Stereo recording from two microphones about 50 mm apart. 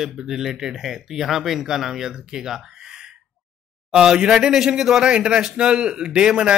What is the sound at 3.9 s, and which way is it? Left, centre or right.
Speech, centre.